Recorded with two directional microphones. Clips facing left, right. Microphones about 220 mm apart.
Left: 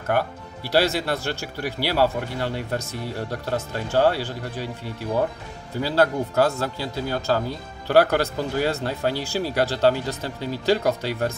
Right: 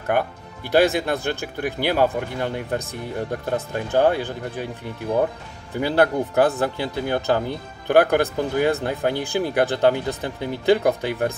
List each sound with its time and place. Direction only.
0.7 s a man's voice: 15° right (ahead or behind)
1.7 s speech: 50° right (ahead or behind)
2.0 s a man's voice: 15° right (ahead or behind)
5.8 s a man's voice: 20° right (ahead or behind)